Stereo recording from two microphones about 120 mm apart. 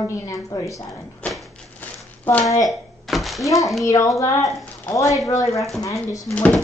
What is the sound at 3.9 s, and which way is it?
A woman's voice, 25° left (ahead or behind).